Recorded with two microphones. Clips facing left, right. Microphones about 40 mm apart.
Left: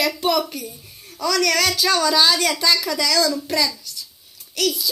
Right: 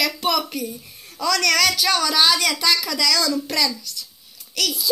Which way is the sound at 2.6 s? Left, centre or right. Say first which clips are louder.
Left 1 dB; right.